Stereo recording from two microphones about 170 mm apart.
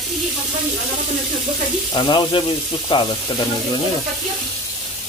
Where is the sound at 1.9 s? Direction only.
30° left (ahead or behind).